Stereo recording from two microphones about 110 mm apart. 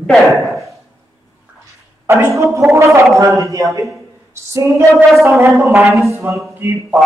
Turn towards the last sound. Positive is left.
turn(degrees=-20)  # may be behind; listen again after turning